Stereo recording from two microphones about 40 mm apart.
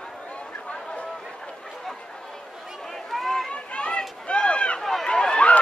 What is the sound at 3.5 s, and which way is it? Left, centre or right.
Run, left.